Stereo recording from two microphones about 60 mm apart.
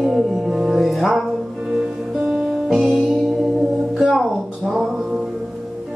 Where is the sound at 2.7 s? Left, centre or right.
Centre.